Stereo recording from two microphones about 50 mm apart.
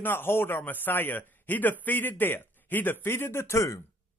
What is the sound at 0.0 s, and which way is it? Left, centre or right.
A man's voice, left.